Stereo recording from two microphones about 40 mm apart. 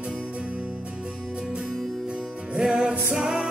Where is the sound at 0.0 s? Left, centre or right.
Right.